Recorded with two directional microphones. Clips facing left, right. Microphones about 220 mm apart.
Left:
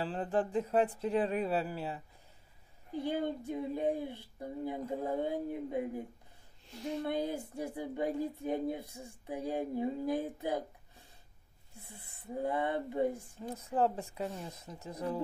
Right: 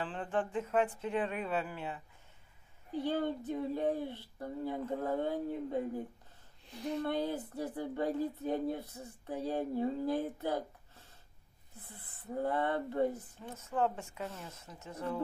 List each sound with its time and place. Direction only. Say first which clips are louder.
0.0 s speech: left 3 dB; 40° left (ahead or behind)
3.0 s speech: right 1 dB; 10° left (ahead or behind)
13.4 s speech: left 2 dB; 35° left (ahead or behind)
14.2 s speech: left 4 dB; 15° left (ahead or behind)
14.6 s speech: even; 35° left (ahead or behind)